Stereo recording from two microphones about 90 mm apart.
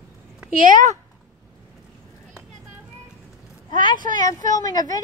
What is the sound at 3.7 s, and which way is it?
Speech, 50° left (ahead or behind).